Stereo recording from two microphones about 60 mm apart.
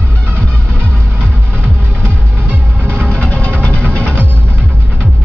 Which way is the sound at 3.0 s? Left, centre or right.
Left.